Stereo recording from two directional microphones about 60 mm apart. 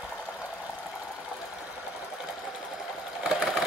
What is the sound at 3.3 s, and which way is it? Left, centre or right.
Sewing machine, centre.